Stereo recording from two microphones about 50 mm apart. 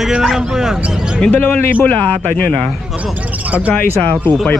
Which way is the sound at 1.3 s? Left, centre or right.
Left.